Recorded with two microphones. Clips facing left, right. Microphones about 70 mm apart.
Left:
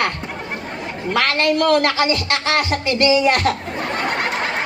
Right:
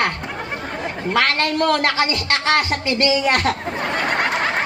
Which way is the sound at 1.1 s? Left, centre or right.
Right.